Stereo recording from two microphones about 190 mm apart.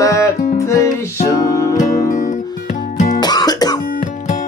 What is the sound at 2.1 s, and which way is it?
Music, 45° left (ahead or behind).